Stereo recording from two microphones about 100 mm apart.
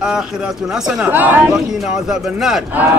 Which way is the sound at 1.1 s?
20° right (ahead or behind).